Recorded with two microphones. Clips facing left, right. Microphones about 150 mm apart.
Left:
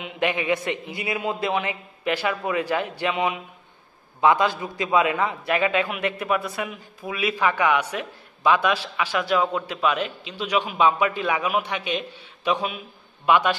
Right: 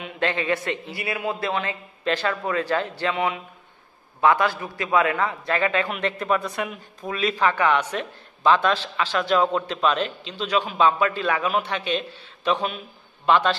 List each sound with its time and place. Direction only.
0.0 s a man's voice: 15° left (ahead or behind)